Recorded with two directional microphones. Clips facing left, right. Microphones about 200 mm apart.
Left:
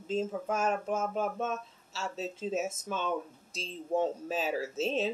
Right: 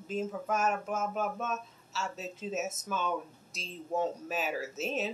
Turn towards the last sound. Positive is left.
turn(degrees=30)  # may be behind; listen again after turning